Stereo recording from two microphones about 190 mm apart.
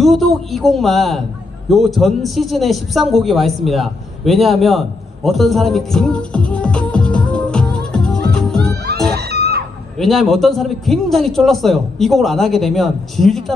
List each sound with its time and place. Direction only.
0.0 s a man's voice: centre (ahead or behind)
9.1 s screaming: 55° right (ahead or behind)
9.9 s a man's voice: centre (ahead or behind)